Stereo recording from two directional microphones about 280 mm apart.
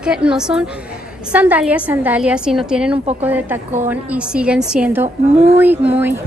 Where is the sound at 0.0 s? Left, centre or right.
Centre.